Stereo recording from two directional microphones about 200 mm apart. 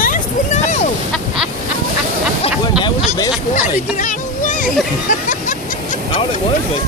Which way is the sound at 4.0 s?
40° left (ahead or behind).